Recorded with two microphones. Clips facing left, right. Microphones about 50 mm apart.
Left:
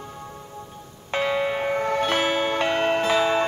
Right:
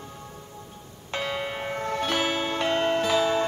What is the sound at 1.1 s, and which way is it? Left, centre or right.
Music, left.